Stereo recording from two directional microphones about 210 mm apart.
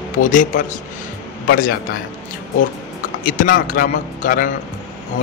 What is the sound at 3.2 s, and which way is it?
Speech, 40° left (ahead or behind).